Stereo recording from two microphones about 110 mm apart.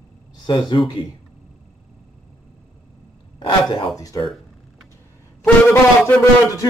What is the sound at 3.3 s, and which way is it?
Speech, 45° left (ahead or behind).